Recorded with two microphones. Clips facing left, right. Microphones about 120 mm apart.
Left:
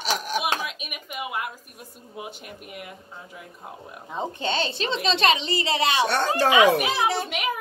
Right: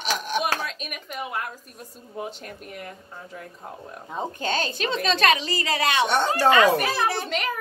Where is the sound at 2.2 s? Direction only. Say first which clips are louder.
Right 4 dB; 10° left (ahead or behind).